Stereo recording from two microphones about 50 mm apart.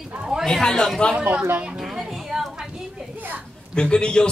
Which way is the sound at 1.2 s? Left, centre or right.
Right.